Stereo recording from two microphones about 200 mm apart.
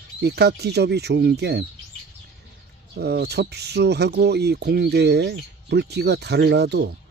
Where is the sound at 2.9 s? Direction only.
55° right (ahead or behind).